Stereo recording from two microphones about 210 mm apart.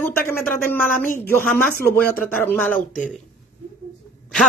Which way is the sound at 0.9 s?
40° left (ahead or behind).